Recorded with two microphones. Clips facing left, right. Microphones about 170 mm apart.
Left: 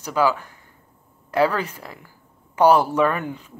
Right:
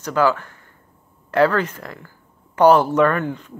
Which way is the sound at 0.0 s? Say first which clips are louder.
Right 2 dB; 10° left (ahead or behind).